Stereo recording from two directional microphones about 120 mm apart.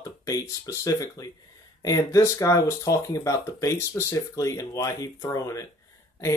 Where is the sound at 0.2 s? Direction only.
25° left (ahead or behind).